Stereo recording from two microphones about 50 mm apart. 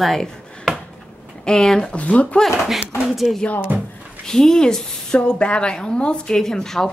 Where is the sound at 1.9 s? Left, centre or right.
Left.